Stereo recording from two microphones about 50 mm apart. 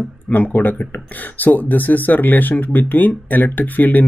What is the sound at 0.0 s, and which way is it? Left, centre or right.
Speech, left.